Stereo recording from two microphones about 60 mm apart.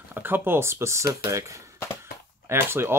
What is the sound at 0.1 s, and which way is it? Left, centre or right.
Speech, right.